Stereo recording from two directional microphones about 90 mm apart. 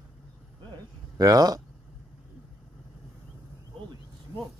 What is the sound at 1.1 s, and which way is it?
Speech, 45° right (ahead or behind).